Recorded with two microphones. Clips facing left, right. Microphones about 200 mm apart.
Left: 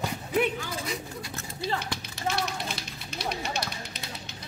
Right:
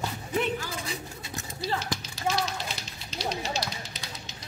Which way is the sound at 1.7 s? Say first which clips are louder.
Right 1 dB; 60° left (ahead or behind).